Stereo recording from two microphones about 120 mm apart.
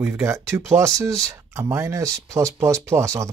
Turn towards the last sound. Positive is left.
turn(degrees=-25)  # may be behind; listen again after turning